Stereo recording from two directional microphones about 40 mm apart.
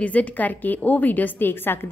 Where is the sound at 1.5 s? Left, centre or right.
Left.